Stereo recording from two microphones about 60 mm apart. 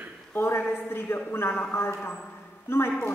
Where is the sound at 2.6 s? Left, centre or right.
Left.